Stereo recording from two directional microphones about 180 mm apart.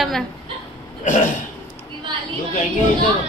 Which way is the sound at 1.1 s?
45° left (ahead or behind).